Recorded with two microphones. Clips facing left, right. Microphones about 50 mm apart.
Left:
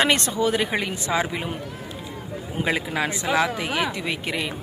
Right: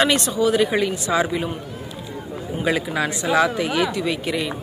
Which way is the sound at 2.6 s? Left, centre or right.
Left.